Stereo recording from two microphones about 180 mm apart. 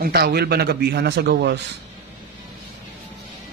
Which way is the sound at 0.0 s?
60° right (ahead or behind).